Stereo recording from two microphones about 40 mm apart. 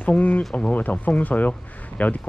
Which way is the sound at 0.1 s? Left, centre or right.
Left.